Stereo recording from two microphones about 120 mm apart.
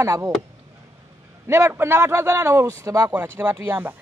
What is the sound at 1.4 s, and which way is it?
A man's voice, 20° right (ahead or behind).